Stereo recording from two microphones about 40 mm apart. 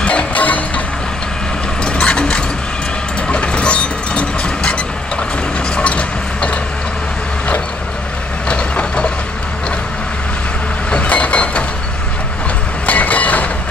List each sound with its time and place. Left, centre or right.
0.0 s music: left
1.9 s a sound: left
3.3 s vehicle: left
5.8 s a sound: left
8.5 s vehicle: left
10.9 s vehicle: left
12.8 s vehicle: left